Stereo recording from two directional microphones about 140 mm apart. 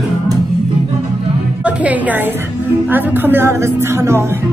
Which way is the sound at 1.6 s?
10° right (ahead or behind).